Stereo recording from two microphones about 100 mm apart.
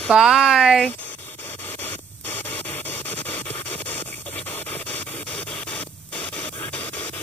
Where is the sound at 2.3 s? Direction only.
20° left (ahead or behind).